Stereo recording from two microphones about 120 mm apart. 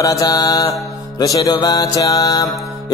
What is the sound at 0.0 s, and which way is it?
Mantra, 30° left (ahead or behind).